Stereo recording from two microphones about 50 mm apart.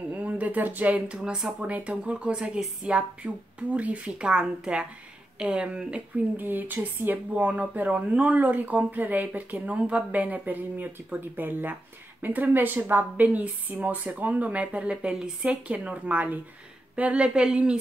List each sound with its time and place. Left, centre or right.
0.1 s a sound: right
1.0 s speech: centre
6.3 s speech: right